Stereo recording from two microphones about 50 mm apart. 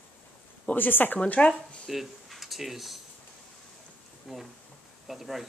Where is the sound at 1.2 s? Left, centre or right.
Left.